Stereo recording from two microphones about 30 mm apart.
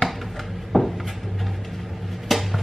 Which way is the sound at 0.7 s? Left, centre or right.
Left.